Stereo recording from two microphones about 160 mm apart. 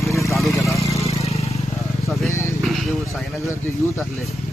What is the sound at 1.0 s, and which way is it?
Vehicle, 40° left (ahead or behind).